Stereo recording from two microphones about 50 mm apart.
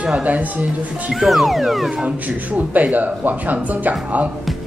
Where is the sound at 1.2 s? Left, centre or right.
Centre.